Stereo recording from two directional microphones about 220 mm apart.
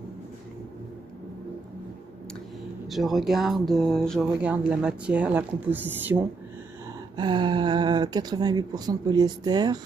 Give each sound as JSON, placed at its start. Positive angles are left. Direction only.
{"t": 2.9, "sound": "speech", "side_deg": 0}
{"t": 7.2, "sound": "speech", "side_deg": -20}